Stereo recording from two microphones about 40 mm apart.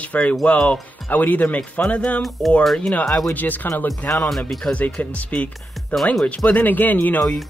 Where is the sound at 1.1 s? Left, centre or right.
Left.